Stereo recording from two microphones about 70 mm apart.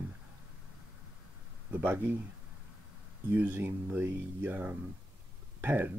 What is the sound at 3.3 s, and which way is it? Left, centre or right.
Speech, right.